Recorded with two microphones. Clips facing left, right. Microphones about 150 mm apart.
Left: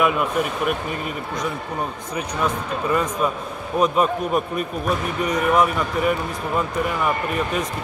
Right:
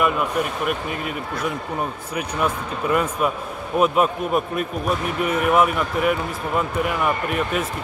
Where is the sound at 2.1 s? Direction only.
5° right (ahead or behind).